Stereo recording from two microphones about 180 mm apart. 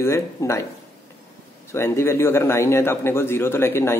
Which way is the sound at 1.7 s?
15° left (ahead or behind).